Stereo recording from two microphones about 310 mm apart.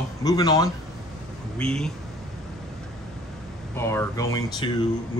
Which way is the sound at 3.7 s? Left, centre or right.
Centre.